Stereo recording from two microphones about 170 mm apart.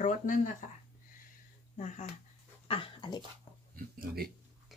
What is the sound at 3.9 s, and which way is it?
Speech, 65° right (ahead or behind).